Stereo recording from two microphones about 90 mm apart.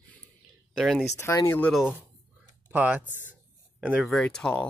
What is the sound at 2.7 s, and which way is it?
Speech, 20° right (ahead or behind).